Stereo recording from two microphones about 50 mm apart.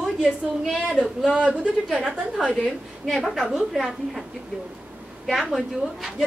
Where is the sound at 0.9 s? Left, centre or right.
Centre.